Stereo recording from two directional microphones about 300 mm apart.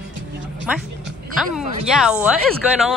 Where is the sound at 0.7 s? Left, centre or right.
Centre.